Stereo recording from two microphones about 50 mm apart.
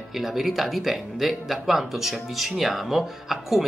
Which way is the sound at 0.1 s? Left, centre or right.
Centre.